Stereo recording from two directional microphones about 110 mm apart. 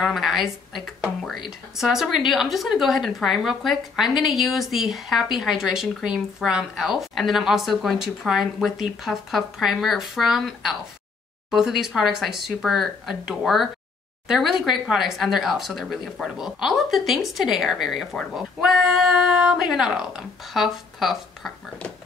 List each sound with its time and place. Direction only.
0.0 s speech: centre (ahead or behind)